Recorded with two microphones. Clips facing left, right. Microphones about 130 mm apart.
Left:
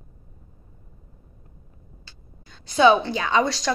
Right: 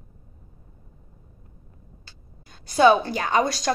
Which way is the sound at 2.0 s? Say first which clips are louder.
Left 1 dB; 45° right (ahead or behind).